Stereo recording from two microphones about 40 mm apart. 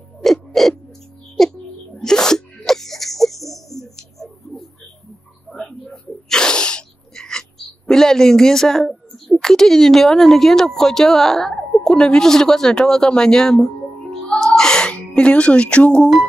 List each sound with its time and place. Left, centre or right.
0.2 s owl: centre
1.4 s music: centre
2.0 s sneeze: centre
7.2 s a sound: centre
7.9 s a woman's voice: centre
14.4 s music: centre